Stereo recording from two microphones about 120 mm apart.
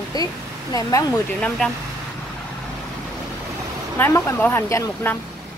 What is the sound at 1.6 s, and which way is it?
Speech, 5° left (ahead or behind).